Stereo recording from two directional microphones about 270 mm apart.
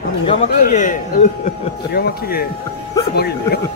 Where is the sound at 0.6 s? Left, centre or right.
Left.